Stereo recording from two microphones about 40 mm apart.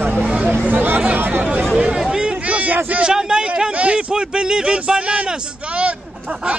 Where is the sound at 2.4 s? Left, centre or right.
Right.